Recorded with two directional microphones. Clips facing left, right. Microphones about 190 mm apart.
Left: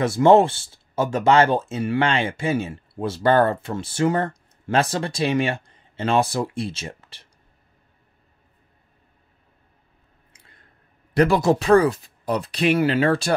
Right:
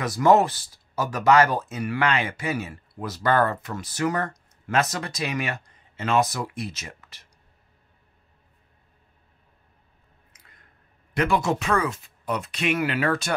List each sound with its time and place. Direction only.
0.0 s speech: 25° left (ahead or behind)
10.3 s squish: 30° left (ahead or behind)
11.1 s speech: 35° left (ahead or behind)